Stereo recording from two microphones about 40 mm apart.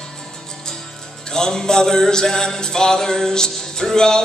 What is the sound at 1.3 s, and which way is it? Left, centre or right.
Music, centre.